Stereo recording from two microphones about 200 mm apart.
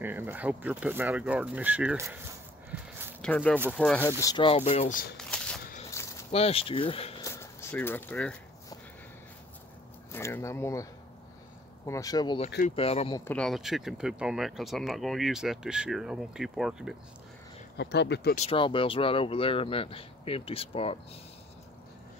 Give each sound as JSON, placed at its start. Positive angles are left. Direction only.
{"t": 0.0, "sound": "speech", "side_deg": -10}
{"t": 2.7, "sound": "a sound", "side_deg": -10}
{"t": 3.2, "sound": "speech", "side_deg": 5}
{"t": 4.2, "sound": "speech", "side_deg": 20}
{"t": 5.1, "sound": "shuffling cards", "side_deg": 5}
{"t": 5.6, "sound": "a sound", "side_deg": 45}
{"t": 5.9, "sound": "a sound", "side_deg": 15}
{"t": 6.3, "sound": "speech", "side_deg": 30}
{"t": 7.2, "sound": "a sound", "side_deg": 15}
{"t": 10.1, "sound": "speech", "side_deg": 10}
{"t": 12.6, "sound": "speech", "side_deg": 30}
{"t": 13.2, "sound": "speech", "side_deg": 5}
{"t": 17.7, "sound": "speech", "side_deg": 60}
{"t": 18.3, "sound": "speech", "side_deg": 30}